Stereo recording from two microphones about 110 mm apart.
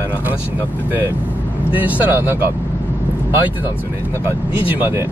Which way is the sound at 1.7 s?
15° right (ahead or behind).